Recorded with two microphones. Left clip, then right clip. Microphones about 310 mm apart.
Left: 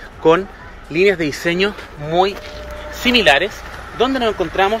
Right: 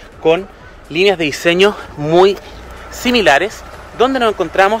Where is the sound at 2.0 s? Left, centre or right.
Right.